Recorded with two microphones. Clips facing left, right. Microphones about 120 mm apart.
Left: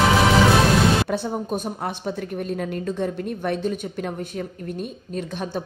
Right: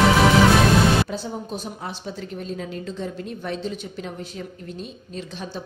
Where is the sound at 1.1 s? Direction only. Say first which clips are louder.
Left 5 dB; 55° left (ahead or behind).